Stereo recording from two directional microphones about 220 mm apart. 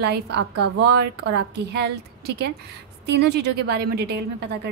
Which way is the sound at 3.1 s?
50° right (ahead or behind).